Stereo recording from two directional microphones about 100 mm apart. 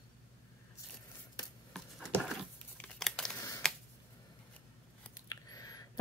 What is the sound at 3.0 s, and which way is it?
Crumpling, 5° left (ahead or behind).